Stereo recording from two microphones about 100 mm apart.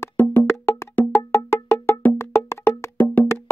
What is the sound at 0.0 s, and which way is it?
Music, 25° left (ahead or behind).